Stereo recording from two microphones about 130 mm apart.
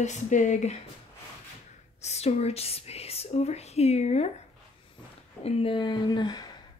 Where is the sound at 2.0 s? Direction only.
55° left (ahead or behind).